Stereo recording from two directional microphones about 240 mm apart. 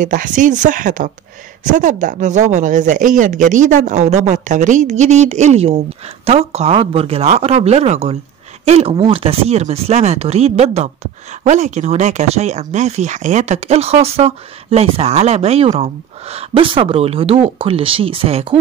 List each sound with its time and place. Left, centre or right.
0.0 s speech: right